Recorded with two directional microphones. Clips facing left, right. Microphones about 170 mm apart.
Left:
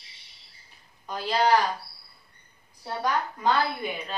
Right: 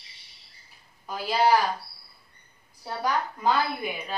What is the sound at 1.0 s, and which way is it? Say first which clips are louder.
Speech: right 1 dB; 5° right (ahead or behind).